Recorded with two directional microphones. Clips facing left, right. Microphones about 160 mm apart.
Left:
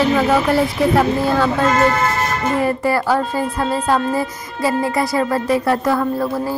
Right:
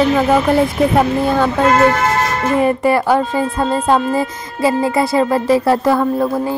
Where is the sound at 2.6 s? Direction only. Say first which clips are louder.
Right 5 dB; 20° right (ahead or behind).